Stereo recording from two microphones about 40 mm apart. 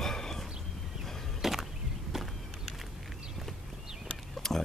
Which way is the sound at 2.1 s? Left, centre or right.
Centre.